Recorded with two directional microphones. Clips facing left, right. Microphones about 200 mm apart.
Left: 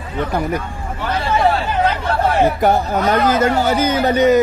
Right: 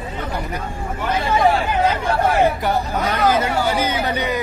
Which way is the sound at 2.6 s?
50° left (ahead or behind).